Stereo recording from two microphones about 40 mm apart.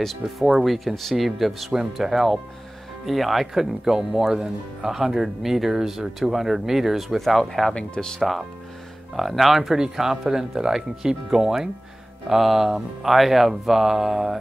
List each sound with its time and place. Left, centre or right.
0.2 s speech: centre
0.7 s speech: centre
7.2 s speech: centre
7.7 s speech: centre
8.2 s speech: centre